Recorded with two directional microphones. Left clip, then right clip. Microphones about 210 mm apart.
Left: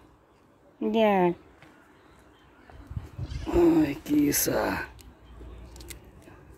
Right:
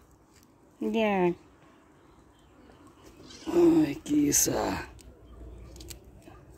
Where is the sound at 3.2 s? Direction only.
Centre (ahead or behind).